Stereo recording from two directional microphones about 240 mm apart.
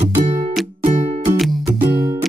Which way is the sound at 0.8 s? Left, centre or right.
Right.